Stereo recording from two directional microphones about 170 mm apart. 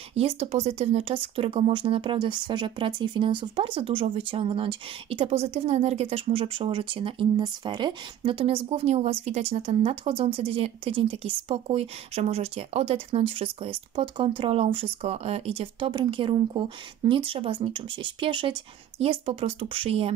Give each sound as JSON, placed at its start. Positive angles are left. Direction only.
{"t": 0.1, "sound": "speech", "side_deg": -35}